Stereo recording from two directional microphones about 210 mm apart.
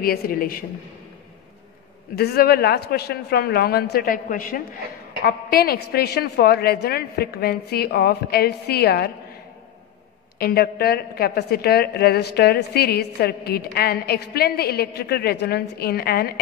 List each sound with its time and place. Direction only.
0.0 s a woman's voice: 45° left (ahead or behind)
2.1 s a woman's voice: 45° left (ahead or behind)
10.4 s a woman's voice: 45° left (ahead or behind)